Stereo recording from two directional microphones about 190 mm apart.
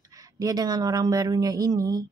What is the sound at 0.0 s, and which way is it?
A man's voice, 20° right (ahead or behind).